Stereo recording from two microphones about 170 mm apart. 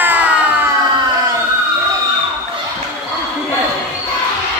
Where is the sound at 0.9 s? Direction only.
25° right (ahead or behind).